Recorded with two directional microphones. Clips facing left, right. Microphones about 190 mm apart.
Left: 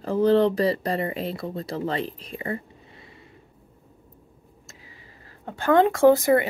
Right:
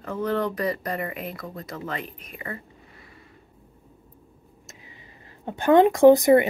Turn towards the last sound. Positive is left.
turn(degrees=-20)  # may be behind; listen again after turning